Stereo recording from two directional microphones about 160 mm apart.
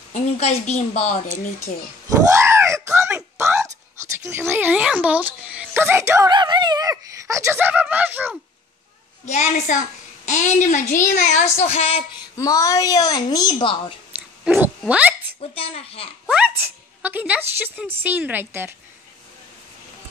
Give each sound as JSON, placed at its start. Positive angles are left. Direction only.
{"t": 0.1, "sound": "a woman's voice", "side_deg": 45}
{"t": 2.0, "sound": "a sound", "side_deg": -15}
{"t": 4.2, "sound": "speech", "side_deg": -15}
{"t": 9.2, "sound": "a woman's voice", "side_deg": 50}
{"t": 12.4, "sound": "a woman's voice", "side_deg": 20}
{"t": 14.4, "sound": "speech", "side_deg": -10}
{"t": 15.5, "sound": "a child's voice", "side_deg": 35}
{"t": 16.3, "sound": "speech", "side_deg": -10}